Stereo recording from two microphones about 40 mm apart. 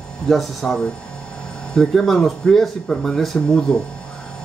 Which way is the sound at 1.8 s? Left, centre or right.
Centre.